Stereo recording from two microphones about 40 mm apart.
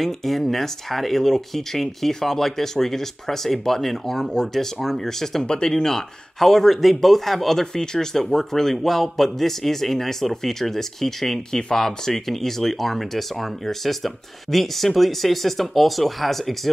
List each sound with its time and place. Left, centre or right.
0.0 s speech: centre